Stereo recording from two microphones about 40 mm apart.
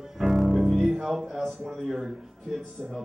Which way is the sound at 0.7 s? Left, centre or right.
Centre.